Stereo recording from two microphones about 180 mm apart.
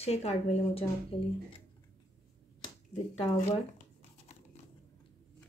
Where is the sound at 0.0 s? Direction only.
35° left (ahead or behind).